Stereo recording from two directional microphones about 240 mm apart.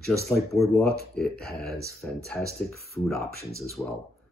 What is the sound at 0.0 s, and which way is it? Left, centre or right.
Speech, centre.